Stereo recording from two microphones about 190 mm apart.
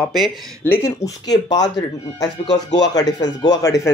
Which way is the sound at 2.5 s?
65° left (ahead or behind).